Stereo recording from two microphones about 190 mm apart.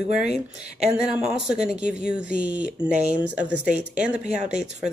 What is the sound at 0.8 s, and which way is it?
Speech, 5° right (ahead or behind).